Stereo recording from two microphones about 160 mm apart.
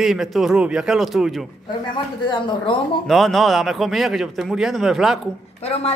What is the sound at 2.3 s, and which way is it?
Speech, 30° left (ahead or behind).